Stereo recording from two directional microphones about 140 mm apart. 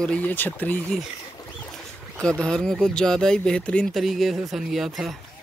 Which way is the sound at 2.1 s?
5° left (ahead or behind).